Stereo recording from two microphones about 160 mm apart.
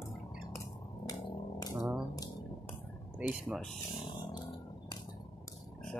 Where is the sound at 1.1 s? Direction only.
20° left (ahead or behind).